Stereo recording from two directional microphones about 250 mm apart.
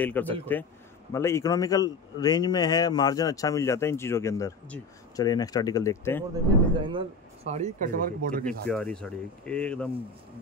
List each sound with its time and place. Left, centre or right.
0.0 s speech: centre
6.9 s speech: right
8.5 s speech: centre